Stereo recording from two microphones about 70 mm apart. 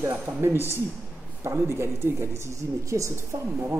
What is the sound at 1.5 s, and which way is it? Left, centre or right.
Speech, right.